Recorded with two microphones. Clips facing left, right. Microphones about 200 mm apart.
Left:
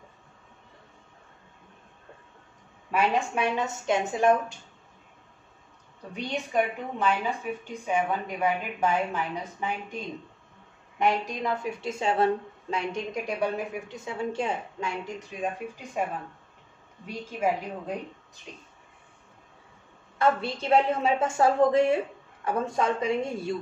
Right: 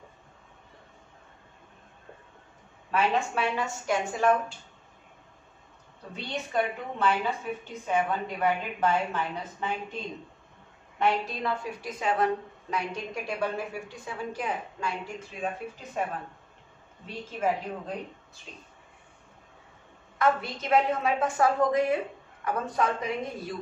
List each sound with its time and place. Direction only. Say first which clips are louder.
2.9 s a woman's voice: left 1 dB; 15° left (ahead or behind)
6.1 s a woman's voice: left 2 dB; 15° left (ahead or behind)
11.0 s a woman's voice: left 1 dB; 15° left (ahead or behind)
16.0 s a woman's voice: left 2 dB; 10° left (ahead or behind)
20.2 s a woman's voice: left 1 dB; 30° left (ahead or behind)